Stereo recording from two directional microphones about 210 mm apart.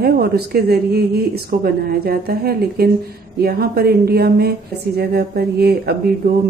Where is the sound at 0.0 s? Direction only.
45° right (ahead or behind).